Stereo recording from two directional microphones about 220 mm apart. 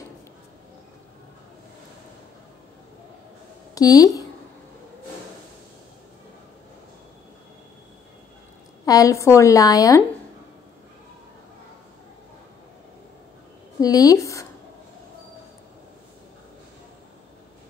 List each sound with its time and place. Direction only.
3.7 s a woman's voice: 15° left (ahead or behind)
8.8 s a woman's voice: 15° left (ahead or behind)
13.7 s a woman's voice: 15° left (ahead or behind)